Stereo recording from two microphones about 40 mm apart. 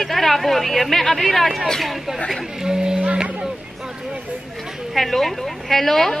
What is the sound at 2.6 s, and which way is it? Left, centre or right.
Speech, centre.